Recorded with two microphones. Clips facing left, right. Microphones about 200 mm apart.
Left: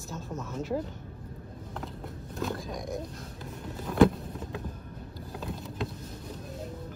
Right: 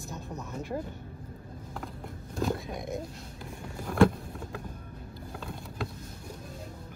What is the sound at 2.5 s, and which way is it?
Speech, 25° right (ahead or behind).